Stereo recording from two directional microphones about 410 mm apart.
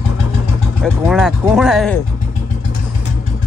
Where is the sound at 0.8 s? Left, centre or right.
Centre.